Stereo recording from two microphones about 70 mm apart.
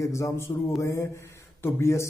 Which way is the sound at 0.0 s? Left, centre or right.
Left.